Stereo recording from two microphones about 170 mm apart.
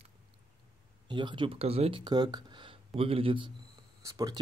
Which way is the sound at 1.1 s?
25° right (ahead or behind).